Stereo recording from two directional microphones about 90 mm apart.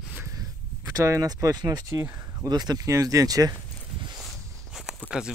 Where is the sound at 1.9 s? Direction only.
35° right (ahead or behind).